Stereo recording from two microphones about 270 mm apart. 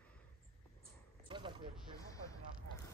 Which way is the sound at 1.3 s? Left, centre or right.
Centre.